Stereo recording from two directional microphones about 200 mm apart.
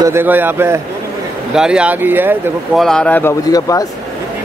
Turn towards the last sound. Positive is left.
turn(degrees=15)  # may be behind; listen again after turning